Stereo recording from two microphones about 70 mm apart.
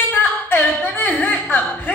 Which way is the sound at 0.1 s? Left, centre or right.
Left.